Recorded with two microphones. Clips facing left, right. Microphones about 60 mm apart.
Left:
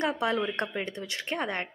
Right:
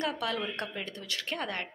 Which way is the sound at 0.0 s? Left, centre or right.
Left.